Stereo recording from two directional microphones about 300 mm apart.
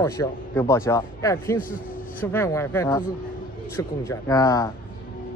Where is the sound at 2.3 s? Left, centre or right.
Centre.